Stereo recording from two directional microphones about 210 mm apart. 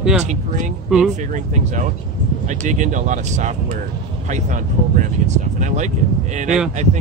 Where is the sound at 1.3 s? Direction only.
35° right (ahead or behind).